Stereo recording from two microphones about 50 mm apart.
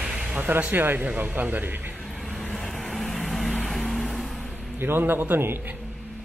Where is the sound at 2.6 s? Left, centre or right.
Centre.